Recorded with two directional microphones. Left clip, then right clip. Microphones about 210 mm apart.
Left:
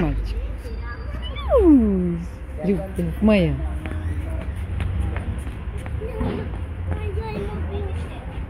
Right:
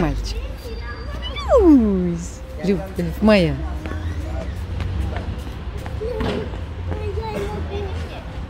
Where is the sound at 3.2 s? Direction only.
Centre (ahead or behind).